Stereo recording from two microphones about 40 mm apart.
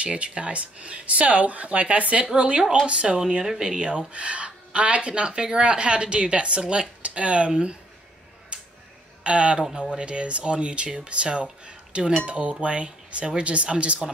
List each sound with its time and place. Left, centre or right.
0.0 s speech: right
3.2 s speech: centre; by 7.7 s right
8.5 s a sound: right
9.2 s speech: right